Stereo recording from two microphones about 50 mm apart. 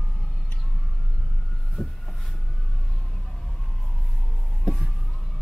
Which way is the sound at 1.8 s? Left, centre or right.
Centre.